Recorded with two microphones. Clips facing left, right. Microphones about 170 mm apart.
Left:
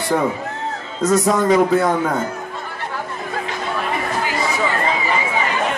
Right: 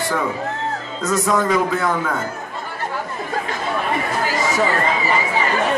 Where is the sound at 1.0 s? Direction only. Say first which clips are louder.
Left 3 dB; 35° left (ahead or behind).